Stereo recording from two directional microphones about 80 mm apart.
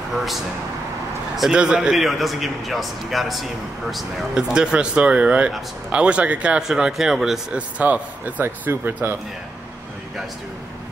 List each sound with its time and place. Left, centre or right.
1.3 s a man's voice: centre
7.5 s speech: centre